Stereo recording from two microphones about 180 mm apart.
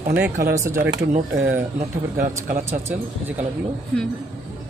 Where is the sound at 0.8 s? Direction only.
70° right (ahead or behind).